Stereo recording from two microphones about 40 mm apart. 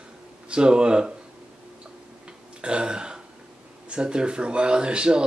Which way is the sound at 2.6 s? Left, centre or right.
Right.